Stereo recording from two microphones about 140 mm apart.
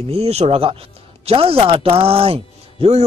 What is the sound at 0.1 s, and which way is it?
Speech, 45° right (ahead or behind).